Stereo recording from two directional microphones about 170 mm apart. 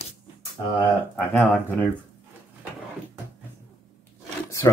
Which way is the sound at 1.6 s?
10° left (ahead or behind).